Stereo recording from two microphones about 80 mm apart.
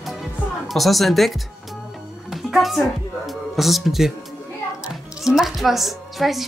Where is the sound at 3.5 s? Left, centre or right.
Centre.